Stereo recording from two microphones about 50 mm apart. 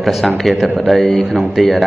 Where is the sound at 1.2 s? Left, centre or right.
Centre.